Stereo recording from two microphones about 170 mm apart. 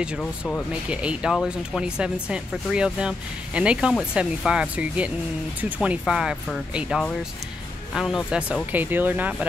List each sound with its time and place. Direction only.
0.2 s speech: 5° left (ahead or behind)
0.8 s speech: 5° right (ahead or behind)